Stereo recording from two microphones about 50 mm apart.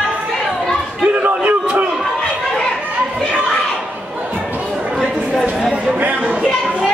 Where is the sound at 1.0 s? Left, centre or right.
Right.